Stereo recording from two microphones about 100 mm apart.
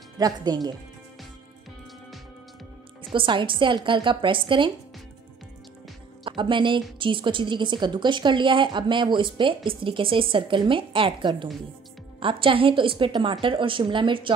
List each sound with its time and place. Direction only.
0.2 s a woman's voice: 45° right (ahead or behind)
3.0 s a woman's voice: 55° right (ahead or behind)
6.2 s a woman's voice: 55° right (ahead or behind)